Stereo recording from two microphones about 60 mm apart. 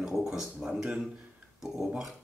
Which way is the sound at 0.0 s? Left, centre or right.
Centre.